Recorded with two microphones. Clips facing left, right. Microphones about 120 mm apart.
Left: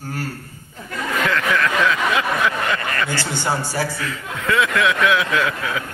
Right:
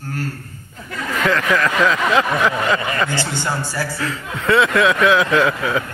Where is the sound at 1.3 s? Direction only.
35° right (ahead or behind).